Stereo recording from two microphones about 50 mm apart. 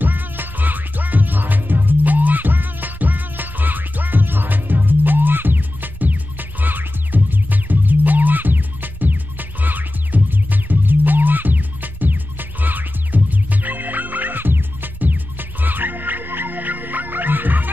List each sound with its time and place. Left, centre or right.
0.0 s music: right